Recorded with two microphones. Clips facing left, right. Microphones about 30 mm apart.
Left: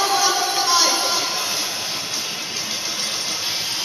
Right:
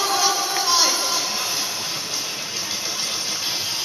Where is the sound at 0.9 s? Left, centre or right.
Centre.